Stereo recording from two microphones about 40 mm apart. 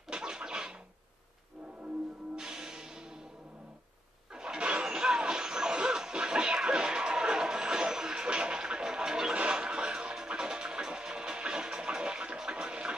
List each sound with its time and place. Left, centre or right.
0.1 s scratching: centre
2.3 s music: centre
4.4 s music: right